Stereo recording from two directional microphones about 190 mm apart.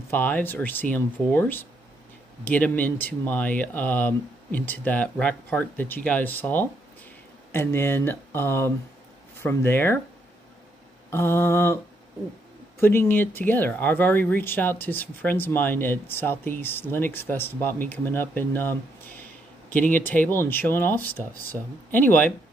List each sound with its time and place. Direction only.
0.1 s speech: 10° left (ahead or behind)
11.1 s speech: 15° left (ahead or behind)
12.8 s speech: 10° left (ahead or behind)